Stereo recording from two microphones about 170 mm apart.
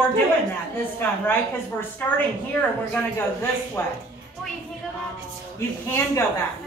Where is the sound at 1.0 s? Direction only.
10° left (ahead or behind).